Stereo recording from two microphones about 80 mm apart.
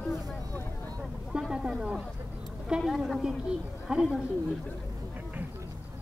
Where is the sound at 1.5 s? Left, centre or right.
Centre.